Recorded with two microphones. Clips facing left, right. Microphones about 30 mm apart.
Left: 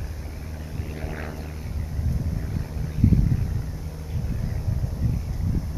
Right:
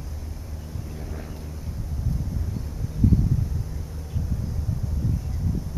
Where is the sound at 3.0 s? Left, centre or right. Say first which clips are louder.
Even; left.